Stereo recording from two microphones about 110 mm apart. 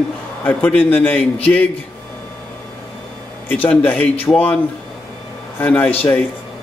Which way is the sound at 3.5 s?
15° left (ahead or behind).